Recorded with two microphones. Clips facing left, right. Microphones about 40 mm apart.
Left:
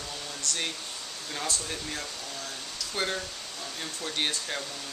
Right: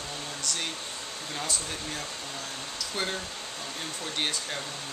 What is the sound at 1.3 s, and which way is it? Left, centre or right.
Speech, centre.